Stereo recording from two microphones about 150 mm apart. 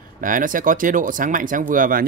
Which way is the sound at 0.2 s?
65° right (ahead or behind).